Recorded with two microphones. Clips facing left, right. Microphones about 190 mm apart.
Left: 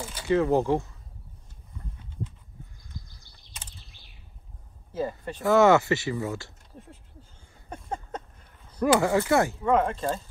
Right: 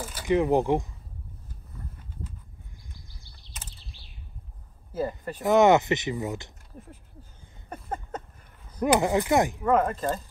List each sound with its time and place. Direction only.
0.0 s speech: 10° right (ahead or behind)
2.9 s a sound: 50° left (ahead or behind)
5.2 s speech: 15° right (ahead or behind)
7.7 s a sound: 5° right (ahead or behind)
8.6 s speech: 15° right (ahead or behind)
9.7 s speech: 5° right (ahead or behind)